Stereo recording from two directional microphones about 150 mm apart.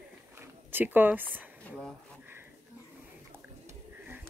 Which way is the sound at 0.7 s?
15° right (ahead or behind).